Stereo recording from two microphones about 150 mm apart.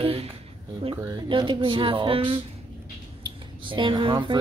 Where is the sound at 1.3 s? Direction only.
35° right (ahead or behind).